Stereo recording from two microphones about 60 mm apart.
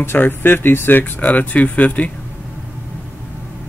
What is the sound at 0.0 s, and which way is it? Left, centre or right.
Speech, left.